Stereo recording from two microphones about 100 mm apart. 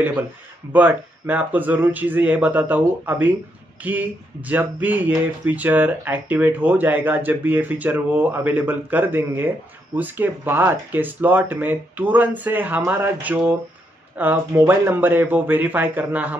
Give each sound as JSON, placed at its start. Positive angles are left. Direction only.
{"t": 0.7, "sound": "speech", "side_deg": -15}